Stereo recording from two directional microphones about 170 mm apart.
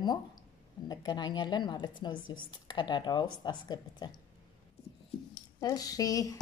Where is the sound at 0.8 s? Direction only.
25° left (ahead or behind).